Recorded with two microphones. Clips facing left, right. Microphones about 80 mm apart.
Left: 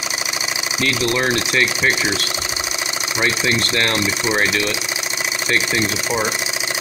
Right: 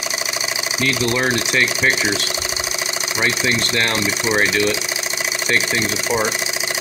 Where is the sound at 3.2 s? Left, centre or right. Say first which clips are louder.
Left 1 dB; centre.